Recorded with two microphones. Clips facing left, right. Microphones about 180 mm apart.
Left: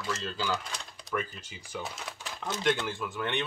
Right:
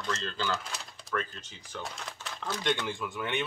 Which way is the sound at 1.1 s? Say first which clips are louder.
Left 1 dB; 10° left (ahead or behind).